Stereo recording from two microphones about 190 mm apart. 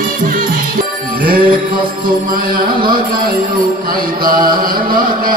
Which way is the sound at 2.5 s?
50° right (ahead or behind).